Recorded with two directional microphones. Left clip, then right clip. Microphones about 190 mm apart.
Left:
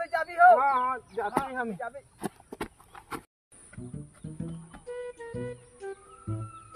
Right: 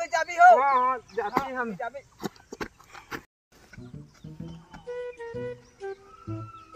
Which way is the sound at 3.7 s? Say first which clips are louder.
Left 2 dB; centre (ahead or behind).